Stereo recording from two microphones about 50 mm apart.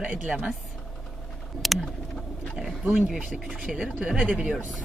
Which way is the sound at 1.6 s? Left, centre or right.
Centre.